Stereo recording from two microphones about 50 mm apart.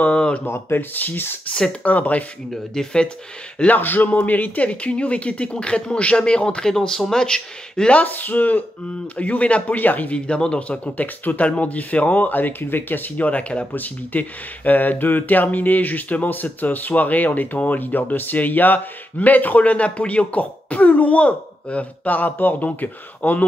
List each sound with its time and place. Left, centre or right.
0.0 s a sound: left
0.5 s speech: left
0.9 s speech: left
1.5 s speech: left
2.5 s speech: centre
3.7 s speech: left; by 6.7 s centre
6.7 s speech: centre
7.9 s speech: left
10.1 s speech: left
11.0 s speech: left
13.3 s speech: left